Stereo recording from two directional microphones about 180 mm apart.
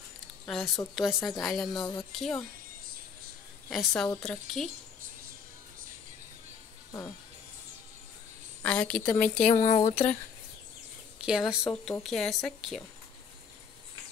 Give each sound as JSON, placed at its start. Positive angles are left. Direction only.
{"t": 0.5, "sound": "speech", "side_deg": 0}
{"t": 3.7, "sound": "speech", "side_deg": 0}
{"t": 8.6, "sound": "a woman's voice", "side_deg": 5}
{"t": 9.5, "sound": "speech", "side_deg": 45}
{"t": 11.2, "sound": "speech", "side_deg": -5}